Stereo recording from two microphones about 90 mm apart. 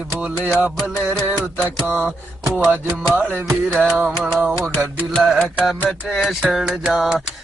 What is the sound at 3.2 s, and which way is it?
Music, 20° right (ahead or behind).